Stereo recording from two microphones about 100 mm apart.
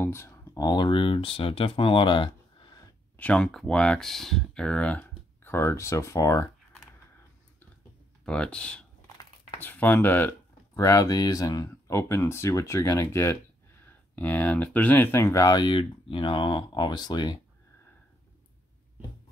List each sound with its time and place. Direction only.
0.0 s a sound: 25° left (ahead or behind)
0.6 s speech: 45° left (ahead or behind)
3.2 s speech: 15° left (ahead or behind); by 6.5 s 30° left (ahead or behind)
8.3 s speech: 10° left (ahead or behind)
10.8 s speech: 35° left (ahead or behind)
15.3 s speech: 40° left (ahead or behind)